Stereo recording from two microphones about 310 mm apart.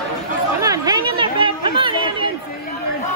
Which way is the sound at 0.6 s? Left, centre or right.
Centre.